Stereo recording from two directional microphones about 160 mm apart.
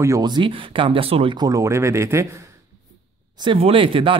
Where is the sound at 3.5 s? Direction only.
35° right (ahead or behind).